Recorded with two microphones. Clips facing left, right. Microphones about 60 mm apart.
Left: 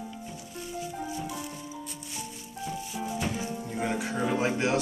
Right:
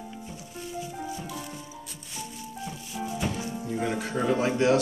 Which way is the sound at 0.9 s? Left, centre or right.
Centre.